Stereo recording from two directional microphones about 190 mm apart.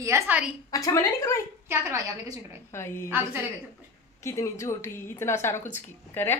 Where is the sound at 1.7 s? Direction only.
15° right (ahead or behind).